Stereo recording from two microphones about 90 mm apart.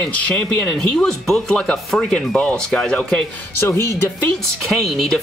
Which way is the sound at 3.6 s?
30° left (ahead or behind).